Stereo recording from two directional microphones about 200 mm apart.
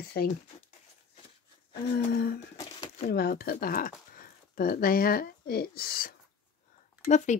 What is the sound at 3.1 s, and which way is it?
Speech, 50° left (ahead or behind).